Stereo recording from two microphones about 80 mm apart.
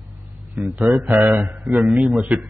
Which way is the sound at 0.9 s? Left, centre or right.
Centre.